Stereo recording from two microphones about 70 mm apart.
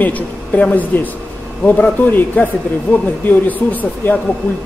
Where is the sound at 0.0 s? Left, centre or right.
Left.